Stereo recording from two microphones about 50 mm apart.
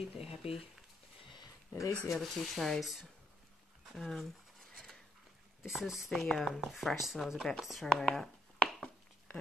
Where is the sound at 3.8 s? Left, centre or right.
Centre.